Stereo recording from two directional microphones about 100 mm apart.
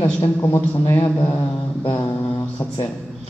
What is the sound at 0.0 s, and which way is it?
A man's voice, 25° left (ahead or behind).